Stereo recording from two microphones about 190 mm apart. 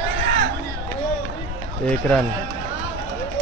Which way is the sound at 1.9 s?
5° left (ahead or behind).